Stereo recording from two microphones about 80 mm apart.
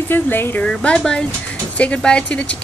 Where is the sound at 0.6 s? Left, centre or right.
Centre.